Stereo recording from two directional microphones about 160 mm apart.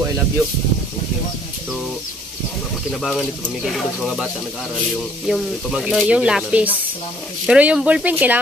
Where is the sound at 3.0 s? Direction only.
Centre (ahead or behind).